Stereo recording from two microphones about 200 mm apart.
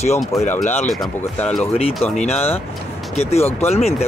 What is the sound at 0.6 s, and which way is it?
Speech, 35° left (ahead or behind).